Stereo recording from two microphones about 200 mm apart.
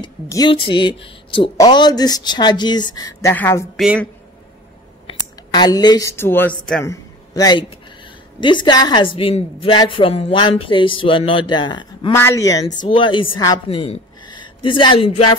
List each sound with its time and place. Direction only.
0.0 s speech: 20° left (ahead or behind)
5.0 s speech: 20° left (ahead or behind)
6.9 s a sound: 20° left (ahead or behind)
8.4 s a woman's voice: 25° left (ahead or behind)